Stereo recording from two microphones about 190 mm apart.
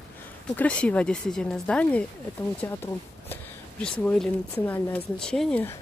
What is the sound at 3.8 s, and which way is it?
A woman's voice, 5° left (ahead or behind).